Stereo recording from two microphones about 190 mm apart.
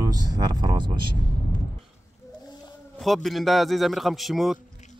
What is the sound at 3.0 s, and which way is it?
Speech, centre (ahead or behind).